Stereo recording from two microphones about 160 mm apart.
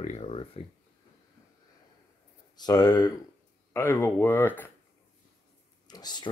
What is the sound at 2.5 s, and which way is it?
Speech, 25° left (ahead or behind).